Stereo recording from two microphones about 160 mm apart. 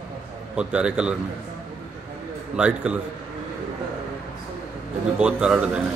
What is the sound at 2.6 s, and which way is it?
Speech, 5° right (ahead or behind).